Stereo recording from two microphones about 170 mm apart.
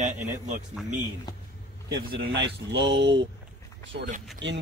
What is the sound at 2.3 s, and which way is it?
Speech, 90° right.